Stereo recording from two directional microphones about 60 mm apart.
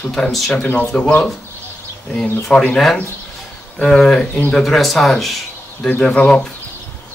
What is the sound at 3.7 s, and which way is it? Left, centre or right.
Speech, centre.